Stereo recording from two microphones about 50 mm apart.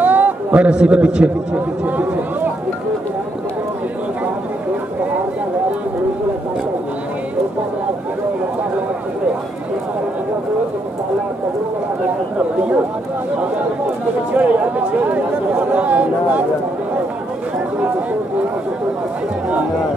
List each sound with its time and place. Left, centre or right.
0.0 s a man's voice: right
1.9 s chatter: right
14.3 s chatter: right